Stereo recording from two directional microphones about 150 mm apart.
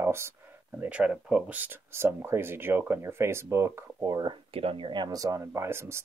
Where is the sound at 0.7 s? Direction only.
10° right (ahead or behind).